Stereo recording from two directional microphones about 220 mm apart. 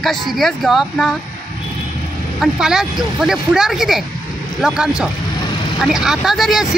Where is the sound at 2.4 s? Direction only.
Centre (ahead or behind).